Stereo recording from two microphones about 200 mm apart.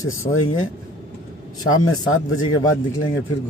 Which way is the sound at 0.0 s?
90° left.